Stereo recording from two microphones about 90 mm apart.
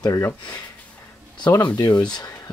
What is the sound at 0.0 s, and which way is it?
Speech, 40° left (ahead or behind).